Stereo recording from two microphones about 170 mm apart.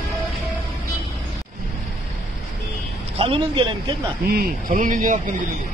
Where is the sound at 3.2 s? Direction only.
30° right (ahead or behind).